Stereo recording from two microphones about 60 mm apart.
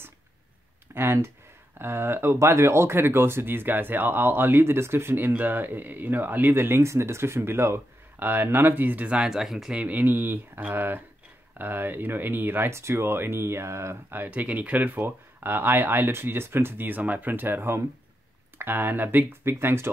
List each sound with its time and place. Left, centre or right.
0.9 s a sound: right
1.8 s speech: right
6.5 s speech: right
8.2 s speech: right; by 9.4 s centre
9.4 s speech: centre
9.7 s speech: right
14.1 s speech: right